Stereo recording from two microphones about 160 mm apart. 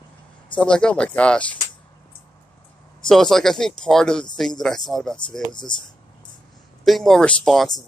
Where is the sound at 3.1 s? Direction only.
Centre (ahead or behind).